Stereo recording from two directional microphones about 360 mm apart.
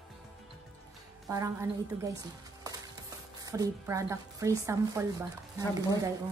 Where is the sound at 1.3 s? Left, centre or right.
Centre.